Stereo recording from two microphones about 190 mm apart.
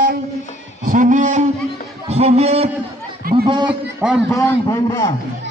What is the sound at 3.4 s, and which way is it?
Speech, 25° right (ahead or behind).